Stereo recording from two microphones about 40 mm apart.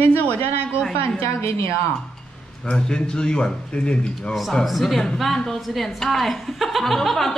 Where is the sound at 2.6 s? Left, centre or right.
Left.